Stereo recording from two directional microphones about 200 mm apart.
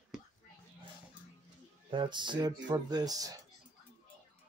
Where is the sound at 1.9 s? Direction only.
25° right (ahead or behind).